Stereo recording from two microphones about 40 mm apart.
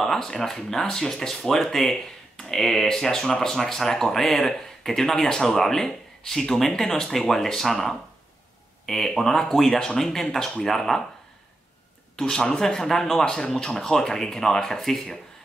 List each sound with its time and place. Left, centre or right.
0.0 s speech: centre
12.2 s speech: centre
13.2 s speech: centre